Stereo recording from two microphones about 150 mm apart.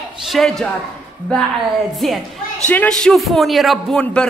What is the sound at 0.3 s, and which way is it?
Speech, centre (ahead or behind).